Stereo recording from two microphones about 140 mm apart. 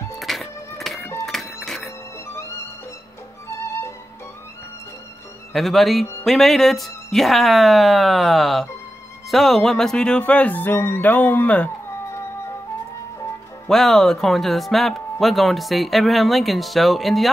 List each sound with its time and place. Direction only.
0.2 s music: centre (ahead or behind)
2.2 s violin: 20° left (ahead or behind)
3.5 s music: 20° left (ahead or behind)
5.5 s speech: centre (ahead or behind)
9.3 s music: centre (ahead or behind)
13.7 s speech: centre (ahead or behind)